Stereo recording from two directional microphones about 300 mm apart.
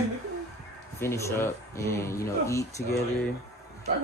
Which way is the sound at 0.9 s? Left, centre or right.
Centre.